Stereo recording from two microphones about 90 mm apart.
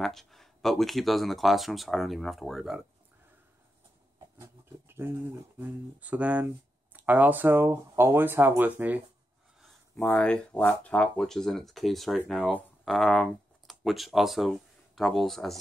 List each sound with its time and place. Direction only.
0.0 s speech: 5° left (ahead or behind)
4.4 s a sound: 25° right (ahead or behind)
5.9 s speech: 15° right (ahead or behind)
10.0 s speech: 15° left (ahead or behind)